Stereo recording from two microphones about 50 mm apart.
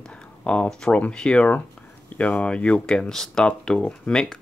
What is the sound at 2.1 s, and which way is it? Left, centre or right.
Speech, left.